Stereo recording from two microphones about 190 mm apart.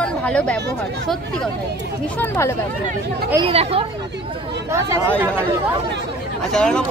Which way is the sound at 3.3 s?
30° right (ahead or behind).